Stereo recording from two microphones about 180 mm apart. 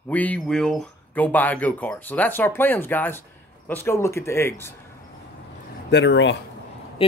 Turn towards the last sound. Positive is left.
turn(degrees=30)  # may be behind; listen again after turning